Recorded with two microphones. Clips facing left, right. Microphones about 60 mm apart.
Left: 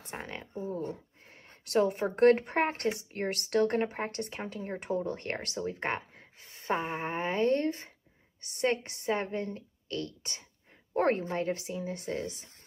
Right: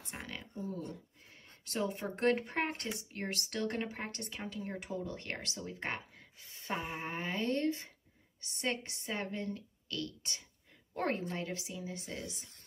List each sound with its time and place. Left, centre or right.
0.1 s speech: left
1.7 s speech: left